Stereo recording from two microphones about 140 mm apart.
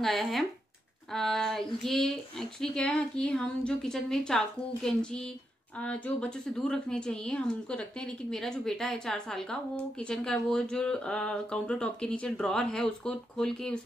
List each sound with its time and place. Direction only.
0.0 s speech: centre (ahead or behind)